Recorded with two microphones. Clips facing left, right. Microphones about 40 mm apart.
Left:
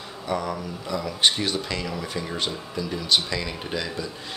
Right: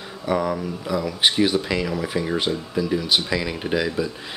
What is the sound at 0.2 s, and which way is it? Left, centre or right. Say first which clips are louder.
Speech: right 5 dB; centre.